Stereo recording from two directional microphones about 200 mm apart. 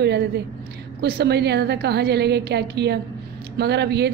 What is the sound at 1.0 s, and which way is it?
A woman's voice, 55° right (ahead or behind).